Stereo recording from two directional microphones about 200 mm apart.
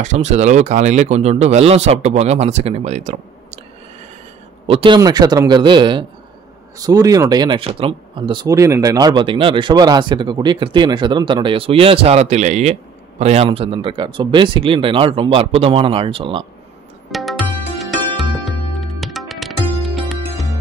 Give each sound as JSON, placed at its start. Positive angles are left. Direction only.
{"t": 0.0, "sound": "speech", "side_deg": -35}
{"t": 4.6, "sound": "speech", "side_deg": -25}
{"t": 17.1, "sound": "music", "side_deg": 0}